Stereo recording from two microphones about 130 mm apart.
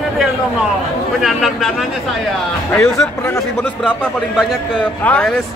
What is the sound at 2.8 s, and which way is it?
Speech, 25° left (ahead or behind).